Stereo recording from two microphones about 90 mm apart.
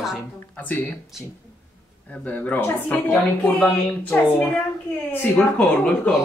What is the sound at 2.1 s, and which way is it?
Speech, 15° left (ahead or behind).